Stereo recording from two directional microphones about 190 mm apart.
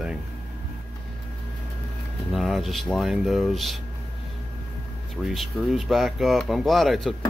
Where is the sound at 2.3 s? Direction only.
Centre (ahead or behind).